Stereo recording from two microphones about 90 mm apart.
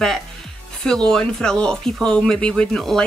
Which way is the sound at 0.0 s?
5° left (ahead or behind).